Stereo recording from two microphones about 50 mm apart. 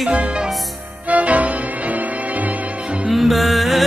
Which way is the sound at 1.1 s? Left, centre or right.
Right.